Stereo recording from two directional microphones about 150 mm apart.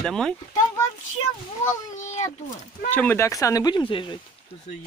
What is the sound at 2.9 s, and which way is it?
Speech, 10° left (ahead or behind).